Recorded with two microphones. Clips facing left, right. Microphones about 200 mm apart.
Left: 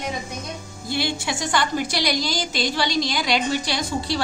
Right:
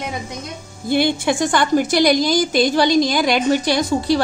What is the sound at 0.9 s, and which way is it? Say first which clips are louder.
A woman's voice: right 9 dB; 55° right (ahead or behind).